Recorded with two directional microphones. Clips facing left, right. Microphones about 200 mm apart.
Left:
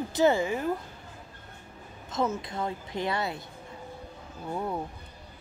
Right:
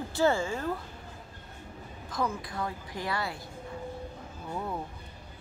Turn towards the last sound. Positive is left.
turn(degrees=15)  # may be behind; listen again after turning